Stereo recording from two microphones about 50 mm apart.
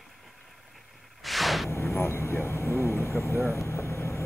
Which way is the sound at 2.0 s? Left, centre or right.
Left.